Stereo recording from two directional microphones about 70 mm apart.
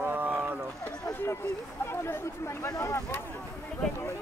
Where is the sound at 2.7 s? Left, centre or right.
Left.